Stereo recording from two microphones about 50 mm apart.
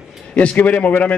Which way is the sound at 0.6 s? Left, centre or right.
Left.